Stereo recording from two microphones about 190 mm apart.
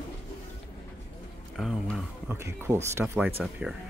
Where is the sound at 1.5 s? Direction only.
Centre (ahead or behind).